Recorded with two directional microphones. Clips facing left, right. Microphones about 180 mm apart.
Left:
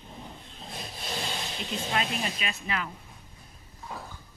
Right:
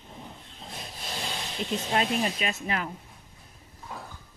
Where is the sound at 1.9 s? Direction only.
45° right (ahead or behind).